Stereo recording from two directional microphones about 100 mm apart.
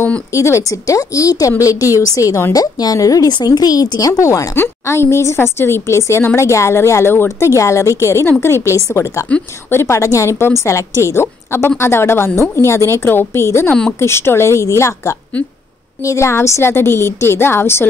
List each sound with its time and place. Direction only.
0.3 s speech: 30° left (ahead or behind)